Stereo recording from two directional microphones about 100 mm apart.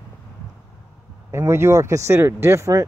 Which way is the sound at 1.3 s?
25° right (ahead or behind).